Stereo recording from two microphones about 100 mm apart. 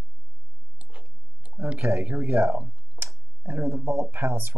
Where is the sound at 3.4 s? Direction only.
25° right (ahead or behind).